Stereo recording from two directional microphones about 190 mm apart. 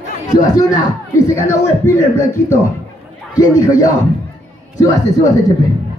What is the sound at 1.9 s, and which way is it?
Speech, 15° left (ahead or behind).